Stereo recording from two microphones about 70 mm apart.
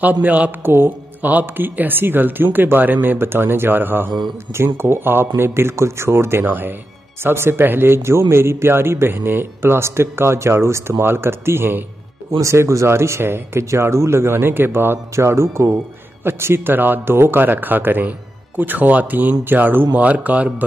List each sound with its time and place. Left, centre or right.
0.0 s a man's voice: right
12.4 s a man's voice: right